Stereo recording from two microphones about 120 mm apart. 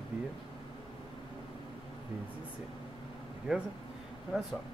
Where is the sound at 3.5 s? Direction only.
10° right (ahead or behind).